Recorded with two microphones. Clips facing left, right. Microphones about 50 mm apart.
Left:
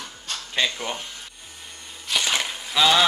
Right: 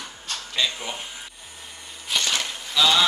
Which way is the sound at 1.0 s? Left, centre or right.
Centre.